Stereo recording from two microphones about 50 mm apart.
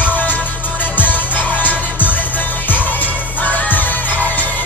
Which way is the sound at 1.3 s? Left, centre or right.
Left.